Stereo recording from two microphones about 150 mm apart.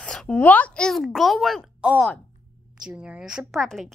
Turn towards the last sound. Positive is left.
turn(degrees=0)  # may be behind; listen again after turning